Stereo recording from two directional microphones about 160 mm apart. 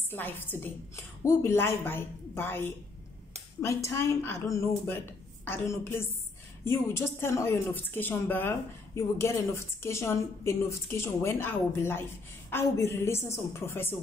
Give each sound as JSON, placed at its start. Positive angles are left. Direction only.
{"t": 0.1, "sound": "a woman's voice", "side_deg": 15}